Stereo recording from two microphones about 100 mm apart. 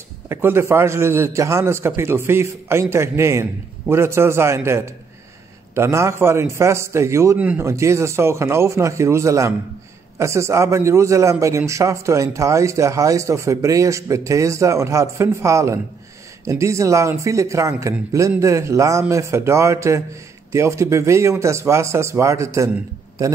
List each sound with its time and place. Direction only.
0.3 s speech: 25° right (ahead or behind)
7.3 s speech: 15° right (ahead or behind)
7.6 s a man's voice: 30° right (ahead or behind)